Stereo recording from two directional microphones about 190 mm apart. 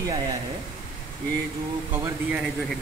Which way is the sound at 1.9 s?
10° right (ahead or behind).